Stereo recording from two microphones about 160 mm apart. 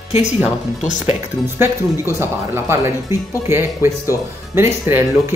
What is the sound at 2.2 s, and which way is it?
Speech, 15° right (ahead or behind).